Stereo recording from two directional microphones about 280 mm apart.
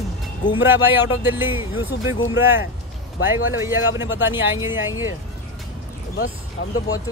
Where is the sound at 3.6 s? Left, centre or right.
Centre.